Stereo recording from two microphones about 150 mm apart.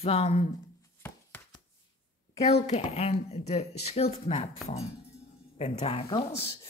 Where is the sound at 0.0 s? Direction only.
45° left (ahead or behind).